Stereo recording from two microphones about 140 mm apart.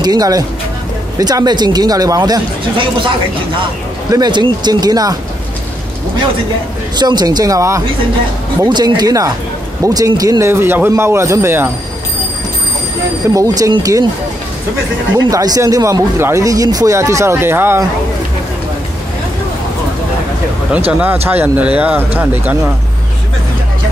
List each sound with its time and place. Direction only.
0.0 s speech: 30° right (ahead or behind)
4.1 s speech: 30° right (ahead or behind)
7.0 s speech: 30° right (ahead or behind)
13.3 s speech: 25° right (ahead or behind)
15.2 s speech: 25° right (ahead or behind)
21.3 s speech: 10° right (ahead or behind)